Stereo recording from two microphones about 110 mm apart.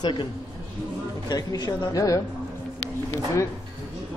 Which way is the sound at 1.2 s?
40° left (ahead or behind).